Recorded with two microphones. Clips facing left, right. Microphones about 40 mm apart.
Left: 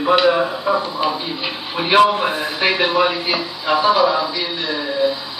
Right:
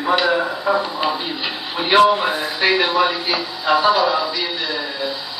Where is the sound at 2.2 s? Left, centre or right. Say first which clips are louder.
Even; centre.